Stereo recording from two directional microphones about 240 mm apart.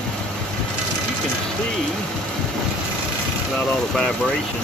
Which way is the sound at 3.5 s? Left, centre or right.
Centre.